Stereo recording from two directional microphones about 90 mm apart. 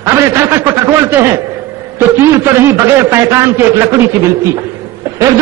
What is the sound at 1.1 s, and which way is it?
A man's voice, 25° right (ahead or behind).